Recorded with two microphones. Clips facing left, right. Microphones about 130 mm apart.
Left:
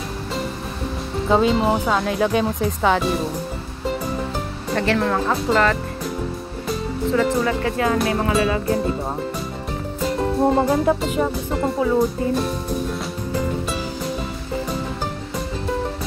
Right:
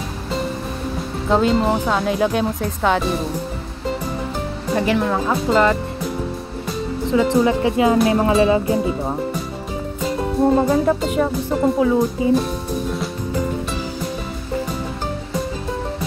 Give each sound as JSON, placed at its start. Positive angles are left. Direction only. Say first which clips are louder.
{"t": 1.3, "sound": "speech", "louder": "right 1 dB", "side_deg": 0}
{"t": 4.7, "sound": "speech", "louder": "right 1 dB", "side_deg": -10}
{"t": 7.4, "sound": "speech", "louder": "right 4 dB", "side_deg": -20}
{"t": 8.6, "sound": "speech", "louder": "right 2 dB", "side_deg": -10}
{"t": 10.0, "sound": "speech", "louder": "right 1 dB", "side_deg": 0}